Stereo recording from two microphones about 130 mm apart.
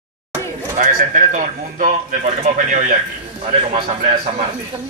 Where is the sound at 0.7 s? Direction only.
90° right.